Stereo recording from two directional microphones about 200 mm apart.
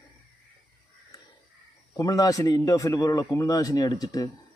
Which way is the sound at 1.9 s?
20° left (ahead or behind).